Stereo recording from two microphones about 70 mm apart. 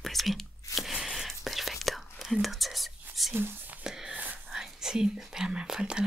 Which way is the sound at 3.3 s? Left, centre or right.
Right.